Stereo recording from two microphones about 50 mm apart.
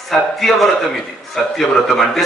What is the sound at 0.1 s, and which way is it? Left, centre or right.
A man's voice, centre.